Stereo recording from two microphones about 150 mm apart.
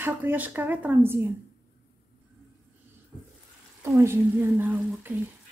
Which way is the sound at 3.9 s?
20° right (ahead or behind).